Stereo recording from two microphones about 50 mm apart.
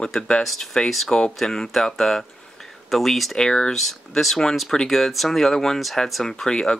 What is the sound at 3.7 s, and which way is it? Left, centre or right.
Speech, centre.